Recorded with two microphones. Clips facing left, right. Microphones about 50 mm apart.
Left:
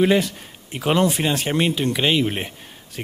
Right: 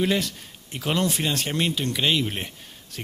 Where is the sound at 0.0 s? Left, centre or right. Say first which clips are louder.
Left 6 dB; centre.